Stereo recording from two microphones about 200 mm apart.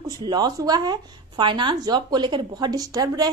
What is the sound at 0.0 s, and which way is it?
A woman's voice, 20° right (ahead or behind).